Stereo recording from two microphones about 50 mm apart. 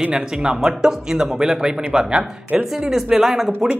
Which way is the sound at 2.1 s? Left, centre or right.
Right.